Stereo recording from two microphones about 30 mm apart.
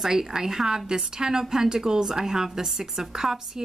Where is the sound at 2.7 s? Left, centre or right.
Centre.